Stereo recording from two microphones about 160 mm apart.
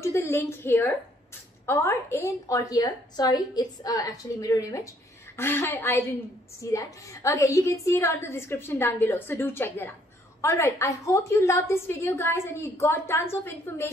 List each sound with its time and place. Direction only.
0.0 s a woman's voice: 15° left (ahead or behind)